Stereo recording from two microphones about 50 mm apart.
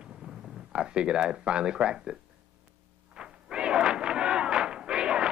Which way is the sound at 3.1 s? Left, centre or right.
Centre.